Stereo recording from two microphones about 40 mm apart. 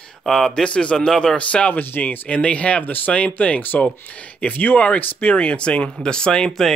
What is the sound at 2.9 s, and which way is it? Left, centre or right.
Speech, left.